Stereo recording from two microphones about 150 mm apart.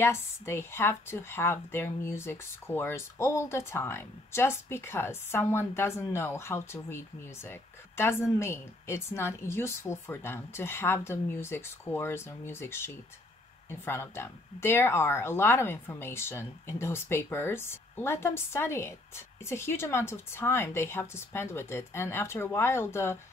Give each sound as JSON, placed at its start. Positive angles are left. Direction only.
{"t": 0.0, "sound": "speech", "side_deg": 15}